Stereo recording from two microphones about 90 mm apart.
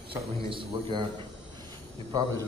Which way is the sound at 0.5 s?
65° right (ahead or behind).